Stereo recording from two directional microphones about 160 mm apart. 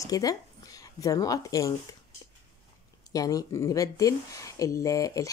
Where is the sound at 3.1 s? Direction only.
20° left (ahead or behind).